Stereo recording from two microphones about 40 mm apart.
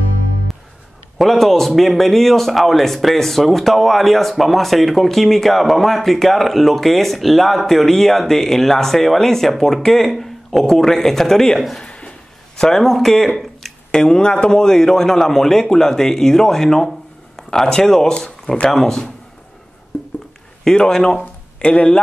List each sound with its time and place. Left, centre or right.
1.1 s speech: centre
11.8 s a sound: left
12.5 s speech: centre
13.9 s speech: centre
20.6 s speech: centre